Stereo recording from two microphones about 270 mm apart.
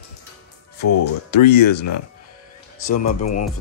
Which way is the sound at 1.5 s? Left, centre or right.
Left.